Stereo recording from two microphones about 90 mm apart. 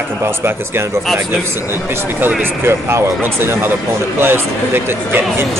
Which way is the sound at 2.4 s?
25° right (ahead or behind).